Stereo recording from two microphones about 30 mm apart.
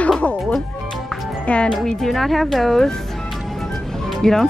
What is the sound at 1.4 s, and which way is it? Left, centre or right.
Speech, left.